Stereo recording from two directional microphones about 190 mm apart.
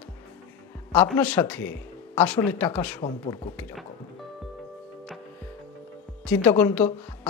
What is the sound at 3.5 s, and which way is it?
Speech, 5° left (ahead or behind).